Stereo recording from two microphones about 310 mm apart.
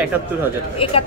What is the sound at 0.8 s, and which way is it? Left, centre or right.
Speech, centre.